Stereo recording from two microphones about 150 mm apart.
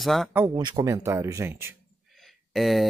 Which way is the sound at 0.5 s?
25° right (ahead or behind).